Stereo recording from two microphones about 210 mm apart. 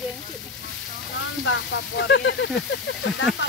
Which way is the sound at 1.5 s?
60° left (ahead or behind).